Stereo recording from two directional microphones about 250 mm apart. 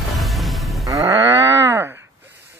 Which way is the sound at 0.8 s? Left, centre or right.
Centre.